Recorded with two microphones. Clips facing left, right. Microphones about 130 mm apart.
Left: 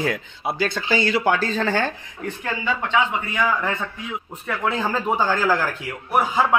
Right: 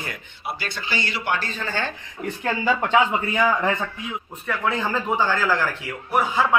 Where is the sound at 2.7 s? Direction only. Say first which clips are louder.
Right 2 dB; 40° right (ahead or behind).